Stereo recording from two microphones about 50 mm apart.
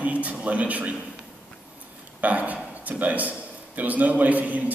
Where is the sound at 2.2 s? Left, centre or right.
Right.